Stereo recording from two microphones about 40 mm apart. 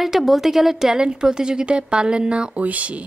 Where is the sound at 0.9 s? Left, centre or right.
Centre.